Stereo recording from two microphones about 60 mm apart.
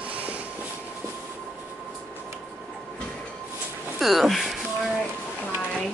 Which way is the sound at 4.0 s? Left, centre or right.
Centre.